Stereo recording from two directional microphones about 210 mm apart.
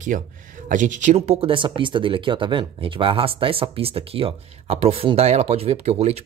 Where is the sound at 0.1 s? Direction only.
40° right (ahead or behind).